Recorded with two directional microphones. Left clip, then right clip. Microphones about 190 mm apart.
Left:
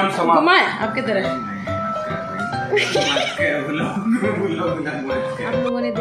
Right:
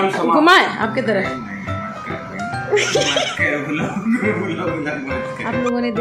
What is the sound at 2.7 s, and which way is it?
Speech, 20° right (ahead or behind).